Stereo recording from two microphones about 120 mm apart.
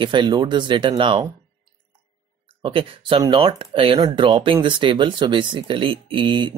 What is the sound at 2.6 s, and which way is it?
Speech, 45° right (ahead or behind).